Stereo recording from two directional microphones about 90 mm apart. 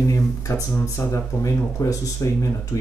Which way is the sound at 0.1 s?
35° left (ahead or behind).